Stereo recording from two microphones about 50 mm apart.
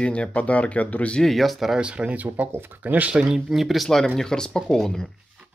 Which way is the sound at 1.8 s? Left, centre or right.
Right.